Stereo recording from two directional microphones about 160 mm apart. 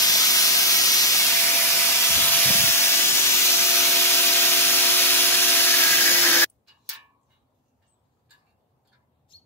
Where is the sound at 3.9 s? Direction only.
15° left (ahead or behind).